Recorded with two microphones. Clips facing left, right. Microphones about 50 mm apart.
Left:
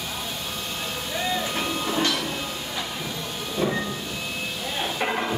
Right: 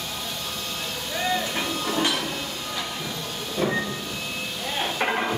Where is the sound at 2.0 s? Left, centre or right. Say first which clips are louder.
Even; centre.